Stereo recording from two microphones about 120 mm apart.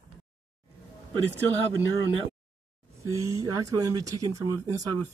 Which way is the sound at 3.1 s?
25° right (ahead or behind).